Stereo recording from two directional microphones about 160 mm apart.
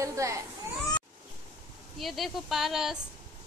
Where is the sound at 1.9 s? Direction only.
Centre (ahead or behind).